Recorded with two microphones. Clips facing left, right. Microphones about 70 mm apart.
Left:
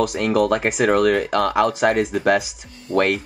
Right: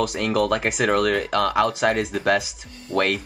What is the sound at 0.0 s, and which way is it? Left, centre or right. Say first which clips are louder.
Speech: left 3 dB; centre.